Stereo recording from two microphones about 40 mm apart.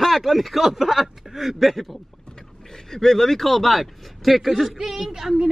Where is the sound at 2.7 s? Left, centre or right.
Centre.